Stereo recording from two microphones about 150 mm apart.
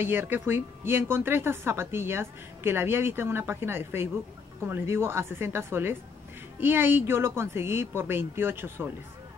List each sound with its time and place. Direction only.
0.0 s speech: 15° right (ahead or behind)